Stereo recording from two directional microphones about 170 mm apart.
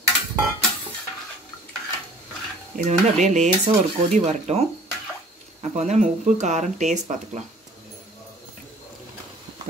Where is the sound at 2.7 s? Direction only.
45° right (ahead or behind).